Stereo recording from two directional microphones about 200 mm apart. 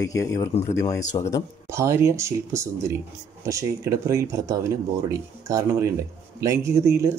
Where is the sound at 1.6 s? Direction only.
15° right (ahead or behind).